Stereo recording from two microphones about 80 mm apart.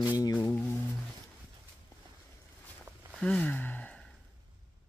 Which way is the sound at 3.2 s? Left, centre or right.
Centre.